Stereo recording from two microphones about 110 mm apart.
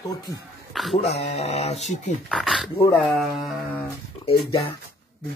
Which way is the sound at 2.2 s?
Centre (ahead or behind).